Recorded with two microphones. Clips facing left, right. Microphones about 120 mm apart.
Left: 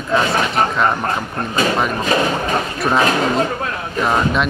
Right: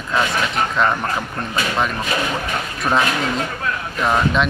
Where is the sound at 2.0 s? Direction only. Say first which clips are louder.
Left 5 dB; 40° left (ahead or behind).